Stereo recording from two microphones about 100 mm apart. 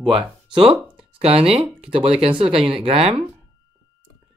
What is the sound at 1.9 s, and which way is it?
Speech, 65° right (ahead or behind).